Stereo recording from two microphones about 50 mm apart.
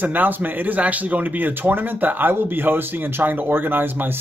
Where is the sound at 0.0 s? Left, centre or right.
Right.